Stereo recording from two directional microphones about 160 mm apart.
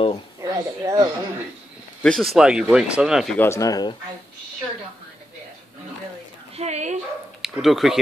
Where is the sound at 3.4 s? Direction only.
20° left (ahead or behind).